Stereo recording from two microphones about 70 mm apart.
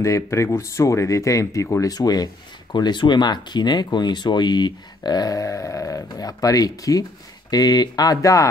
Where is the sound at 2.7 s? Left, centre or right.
Left.